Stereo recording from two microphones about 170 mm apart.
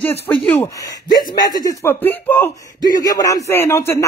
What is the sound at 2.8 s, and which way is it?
Speech, 20° left (ahead or behind).